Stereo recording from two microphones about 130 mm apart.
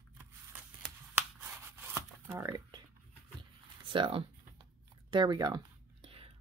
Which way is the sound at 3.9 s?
40° right (ahead or behind).